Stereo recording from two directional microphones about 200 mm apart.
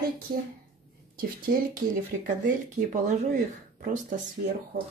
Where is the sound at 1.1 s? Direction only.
45° right (ahead or behind).